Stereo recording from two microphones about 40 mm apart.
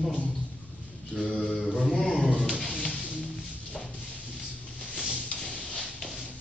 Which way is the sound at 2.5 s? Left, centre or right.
Centre.